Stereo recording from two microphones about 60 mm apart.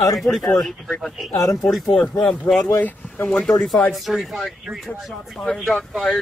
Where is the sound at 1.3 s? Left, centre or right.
Left.